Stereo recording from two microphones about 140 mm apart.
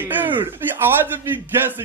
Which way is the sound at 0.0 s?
15° right (ahead or behind).